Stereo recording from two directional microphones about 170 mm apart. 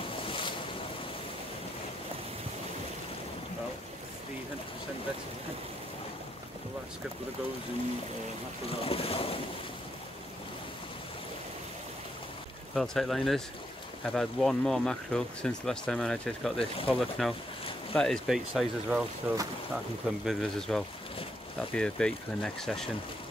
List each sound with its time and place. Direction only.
0.3 s boat: 30° left (ahead or behind)
8.6 s speech: 35° left (ahead or behind)
12.7 s speech: centre (ahead or behind)
16.5 s speech: 35° left (ahead or behind)
16.9 s speech: centre (ahead or behind)